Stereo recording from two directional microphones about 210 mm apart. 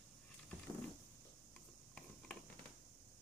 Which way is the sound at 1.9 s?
5° left (ahead or behind).